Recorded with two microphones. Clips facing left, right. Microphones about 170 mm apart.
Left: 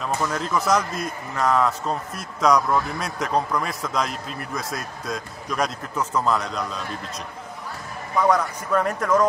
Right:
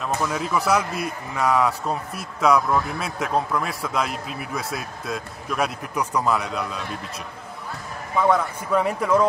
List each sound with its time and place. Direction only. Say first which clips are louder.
0.0 s a man's voice: even; 5° right (ahead or behind)
8.2 s a man's voice: even; 5° right (ahead or behind)